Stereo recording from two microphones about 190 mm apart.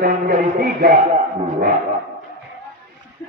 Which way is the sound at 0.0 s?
45° right (ahead or behind).